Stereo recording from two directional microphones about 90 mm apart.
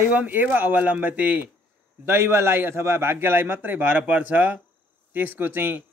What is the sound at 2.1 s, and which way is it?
A man's voice, 25° right (ahead or behind).